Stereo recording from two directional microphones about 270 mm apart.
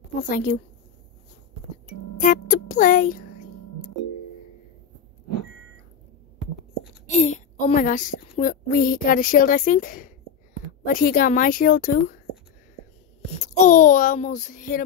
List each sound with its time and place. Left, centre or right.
0.3 s a child's voice: left
2.1 s speech: left
7.1 s a woman's voice: left
13.7 s a child's voice: left